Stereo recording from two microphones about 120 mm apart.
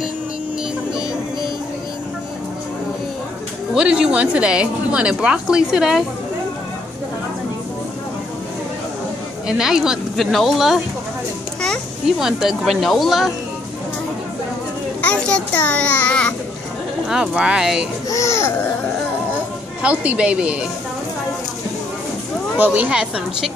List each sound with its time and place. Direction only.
3.7 s a woman's voice: 5° right (ahead or behind)
9.5 s speech: 5° right (ahead or behind)
12.2 s speech: 5° right (ahead or behind)
15.0 s a child's voice: 10° left (ahead or behind)
17.1 s a woman's voice: 5° right (ahead or behind)
18.1 s speech: 25° left (ahead or behind)
19.8 s a woman's voice: 10° right (ahead or behind)
22.6 s a woman's voice: 10° right (ahead or behind)